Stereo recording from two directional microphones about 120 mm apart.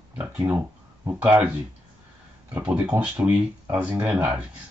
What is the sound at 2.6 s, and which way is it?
Speech, 10° right (ahead or behind).